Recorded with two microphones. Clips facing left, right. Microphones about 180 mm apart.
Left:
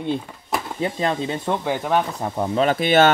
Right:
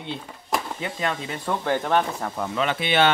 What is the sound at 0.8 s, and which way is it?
Speech, 35° left (ahead or behind).